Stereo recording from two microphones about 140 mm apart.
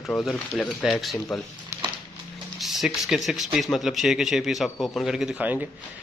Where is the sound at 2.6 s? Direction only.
Centre (ahead or behind).